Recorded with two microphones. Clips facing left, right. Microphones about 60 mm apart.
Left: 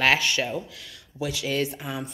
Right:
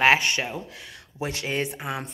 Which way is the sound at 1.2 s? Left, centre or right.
Right.